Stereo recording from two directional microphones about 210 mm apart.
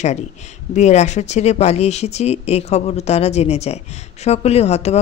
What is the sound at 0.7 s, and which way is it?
A woman's voice, 35° left (ahead or behind).